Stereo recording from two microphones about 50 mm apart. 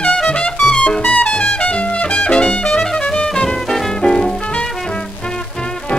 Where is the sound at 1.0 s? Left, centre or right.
Left.